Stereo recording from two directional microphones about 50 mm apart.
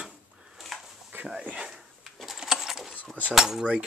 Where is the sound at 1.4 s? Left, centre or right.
Right.